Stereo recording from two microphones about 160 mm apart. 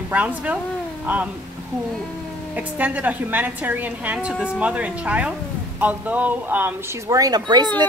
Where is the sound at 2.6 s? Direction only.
10° right (ahead or behind).